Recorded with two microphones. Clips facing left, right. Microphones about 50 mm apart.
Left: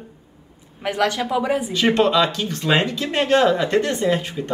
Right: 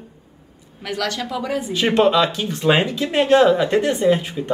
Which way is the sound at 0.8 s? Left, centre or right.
Left.